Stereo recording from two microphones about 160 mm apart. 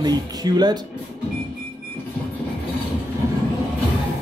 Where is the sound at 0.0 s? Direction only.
25° right (ahead or behind).